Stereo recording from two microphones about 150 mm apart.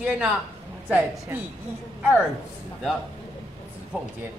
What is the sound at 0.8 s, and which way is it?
Speech, 10° right (ahead or behind).